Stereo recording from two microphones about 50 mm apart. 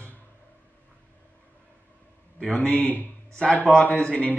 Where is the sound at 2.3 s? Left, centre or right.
Left.